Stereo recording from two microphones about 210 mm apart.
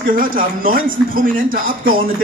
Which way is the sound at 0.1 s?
40° right (ahead or behind).